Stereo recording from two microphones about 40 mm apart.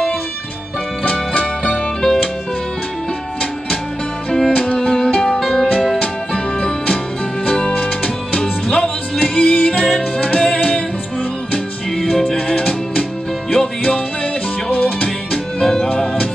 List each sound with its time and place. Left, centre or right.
1.3 s music: left
4.3 s music: centre
7.7 s music: left
8.4 s music: centre
12.4 s music: left
15.6 s music: centre